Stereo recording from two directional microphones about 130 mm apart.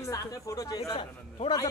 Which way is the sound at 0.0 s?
25° left (ahead or behind).